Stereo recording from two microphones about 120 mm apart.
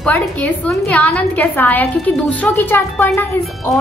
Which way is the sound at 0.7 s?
10° left (ahead or behind).